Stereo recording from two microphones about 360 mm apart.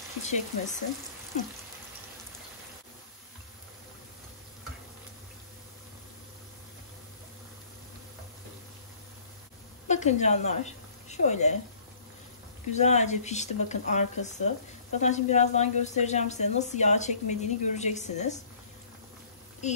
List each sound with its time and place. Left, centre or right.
0.2 s a woman's voice: centre
9.8 s speech: centre
12.7 s a woman's voice: centre
19.6 s a woman's voice: centre